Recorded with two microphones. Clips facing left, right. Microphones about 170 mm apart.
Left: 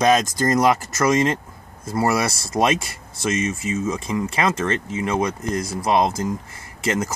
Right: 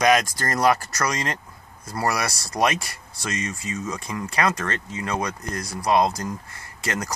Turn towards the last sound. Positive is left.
turn(degrees=25)  # may be behind; listen again after turning